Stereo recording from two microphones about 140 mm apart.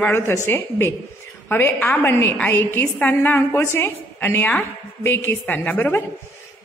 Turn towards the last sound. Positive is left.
turn(degrees=10)  # may be behind; listen again after turning